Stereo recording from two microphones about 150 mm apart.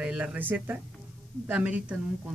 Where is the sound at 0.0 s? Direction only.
5° right (ahead or behind).